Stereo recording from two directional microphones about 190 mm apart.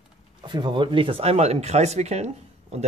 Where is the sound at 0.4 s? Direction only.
25° right (ahead or behind).